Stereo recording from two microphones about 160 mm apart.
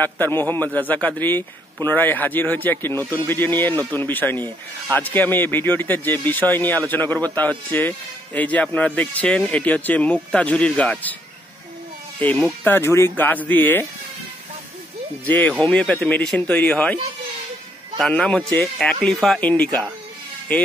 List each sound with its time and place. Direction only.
0.0 s a man's voice: 15° left (ahead or behind)
12.2 s a man's voice: 10° left (ahead or behind)
15.2 s a man's voice: 10° left (ahead or behind)